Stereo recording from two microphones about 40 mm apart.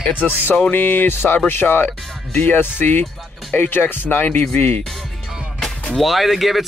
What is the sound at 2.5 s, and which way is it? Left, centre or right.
Speech, left.